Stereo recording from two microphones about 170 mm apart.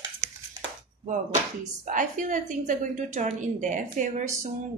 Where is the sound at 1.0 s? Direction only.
45° right (ahead or behind).